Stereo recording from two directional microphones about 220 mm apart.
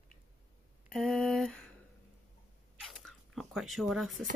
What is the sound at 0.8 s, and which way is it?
Speech, centre (ahead or behind).